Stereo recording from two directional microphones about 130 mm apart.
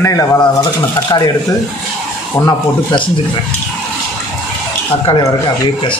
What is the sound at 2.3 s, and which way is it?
Speech, 30° left (ahead or behind).